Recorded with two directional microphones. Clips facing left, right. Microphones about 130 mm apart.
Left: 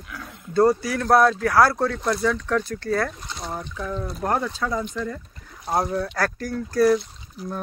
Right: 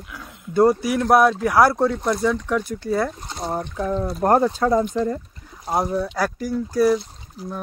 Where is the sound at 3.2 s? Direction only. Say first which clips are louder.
Right 5 dB; 40° right (ahead or behind).